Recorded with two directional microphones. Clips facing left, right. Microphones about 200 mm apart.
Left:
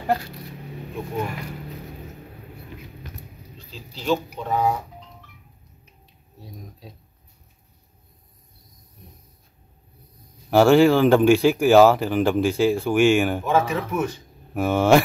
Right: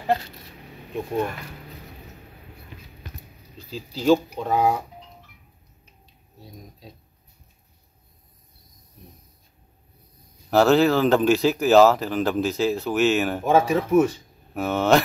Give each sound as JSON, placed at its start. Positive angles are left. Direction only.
{"t": 3.5, "sound": "speech", "side_deg": -40}
{"t": 10.5, "sound": "speech", "side_deg": 10}
{"t": 13.4, "sound": "speech", "side_deg": -35}
{"t": 14.5, "sound": "speech", "side_deg": 10}